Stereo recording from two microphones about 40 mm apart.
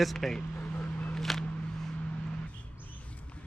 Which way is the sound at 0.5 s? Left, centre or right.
Left.